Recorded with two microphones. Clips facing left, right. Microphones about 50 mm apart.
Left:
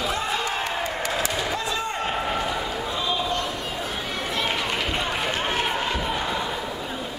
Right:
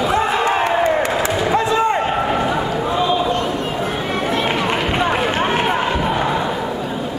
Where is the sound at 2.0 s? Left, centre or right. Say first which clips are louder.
Right 8 dB; right.